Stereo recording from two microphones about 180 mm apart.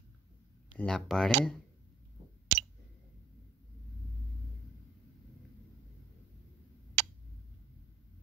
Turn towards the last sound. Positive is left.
turn(degrees=-75)  # may be behind; listen again after turning